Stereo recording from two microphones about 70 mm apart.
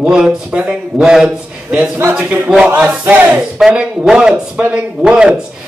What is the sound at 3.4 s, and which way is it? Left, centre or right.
A man's voice, centre.